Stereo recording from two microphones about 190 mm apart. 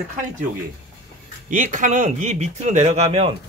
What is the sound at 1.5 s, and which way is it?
Speech, 40° right (ahead or behind).